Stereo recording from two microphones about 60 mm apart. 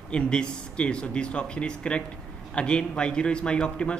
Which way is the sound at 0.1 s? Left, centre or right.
Centre.